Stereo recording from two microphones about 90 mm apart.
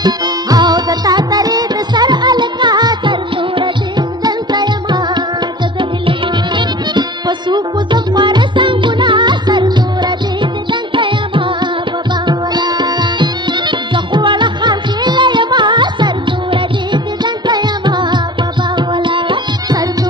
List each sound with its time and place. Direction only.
0.0 s music: 50° right (ahead or behind); by 11.7 s 70° right (ahead or behind)
12.3 s music: 55° right (ahead or behind)